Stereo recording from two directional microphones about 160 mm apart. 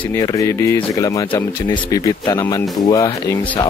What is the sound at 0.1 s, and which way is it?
Speech, 20° left (ahead or behind).